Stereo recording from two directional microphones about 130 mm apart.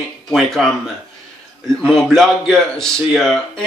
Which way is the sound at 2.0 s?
Centre (ahead or behind).